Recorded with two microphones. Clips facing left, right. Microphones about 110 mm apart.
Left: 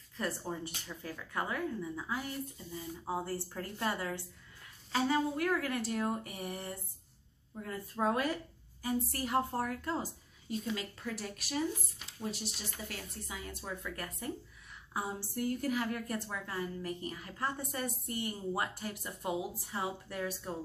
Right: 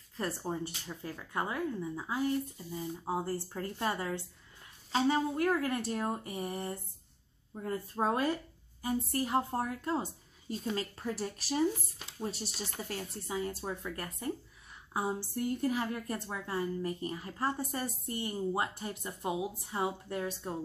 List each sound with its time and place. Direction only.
0.2 s a woman's voice: 25° right (ahead or behind)
10.7 s a woman's voice: 35° right (ahead or behind)